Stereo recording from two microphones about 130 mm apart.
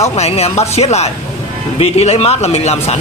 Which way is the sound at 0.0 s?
50° left (ahead or behind).